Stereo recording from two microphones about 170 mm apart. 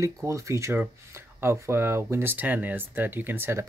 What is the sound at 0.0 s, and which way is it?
Speech, 20° right (ahead or behind).